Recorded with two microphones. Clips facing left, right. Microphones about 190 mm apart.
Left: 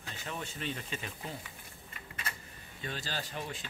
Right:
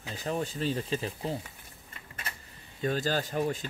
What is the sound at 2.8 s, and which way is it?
Speech, 45° right (ahead or behind).